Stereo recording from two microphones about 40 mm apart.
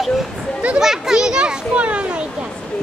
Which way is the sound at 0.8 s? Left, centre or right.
Centre.